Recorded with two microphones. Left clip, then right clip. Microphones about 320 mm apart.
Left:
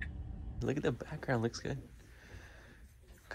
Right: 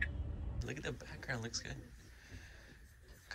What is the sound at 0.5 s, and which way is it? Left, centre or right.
Speech, centre.